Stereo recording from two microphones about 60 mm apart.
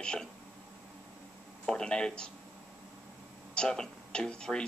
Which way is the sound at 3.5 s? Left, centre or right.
Centre.